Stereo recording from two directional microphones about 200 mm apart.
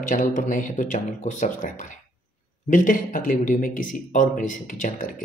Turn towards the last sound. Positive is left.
turn(degrees=40)  # may be behind; listen again after turning